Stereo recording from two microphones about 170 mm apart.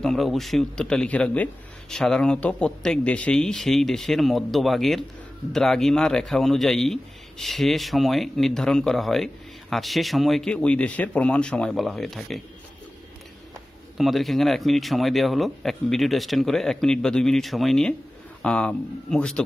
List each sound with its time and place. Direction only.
0.0 s a man's voice: centre (ahead or behind)
13.9 s a man's voice: centre (ahead or behind)